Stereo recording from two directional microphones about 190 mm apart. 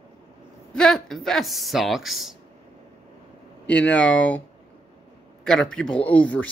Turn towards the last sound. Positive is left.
turn(degrees=10)  # may be behind; listen again after turning